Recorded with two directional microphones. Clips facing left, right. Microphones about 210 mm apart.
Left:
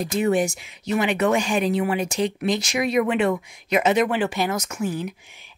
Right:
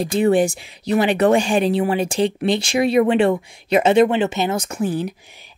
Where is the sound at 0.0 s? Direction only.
30° right (ahead or behind).